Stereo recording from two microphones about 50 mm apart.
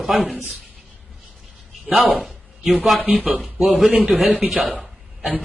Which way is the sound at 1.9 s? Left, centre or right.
Right.